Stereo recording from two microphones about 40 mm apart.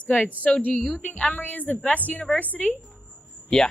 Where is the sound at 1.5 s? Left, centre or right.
Left.